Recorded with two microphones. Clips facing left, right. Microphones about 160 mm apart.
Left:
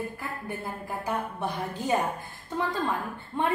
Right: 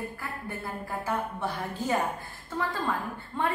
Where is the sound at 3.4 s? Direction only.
15° left (ahead or behind).